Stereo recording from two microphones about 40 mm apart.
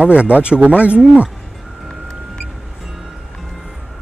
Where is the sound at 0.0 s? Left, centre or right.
Right.